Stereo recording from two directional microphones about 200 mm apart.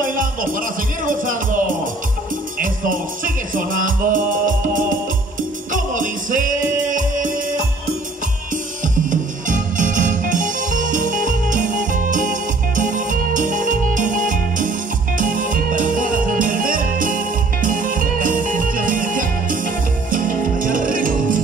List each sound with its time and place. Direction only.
0.0 s music: 45° right (ahead or behind)
8.8 s music: 40° right (ahead or behind)